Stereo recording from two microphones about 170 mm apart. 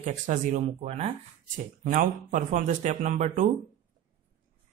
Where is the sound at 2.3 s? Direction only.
45° right (ahead or behind).